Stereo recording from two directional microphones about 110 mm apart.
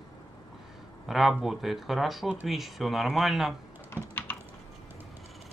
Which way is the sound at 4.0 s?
15° right (ahead or behind).